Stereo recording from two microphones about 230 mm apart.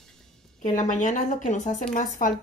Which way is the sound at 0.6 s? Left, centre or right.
Left.